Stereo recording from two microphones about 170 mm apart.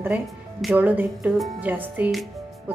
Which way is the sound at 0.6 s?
5° right (ahead or behind).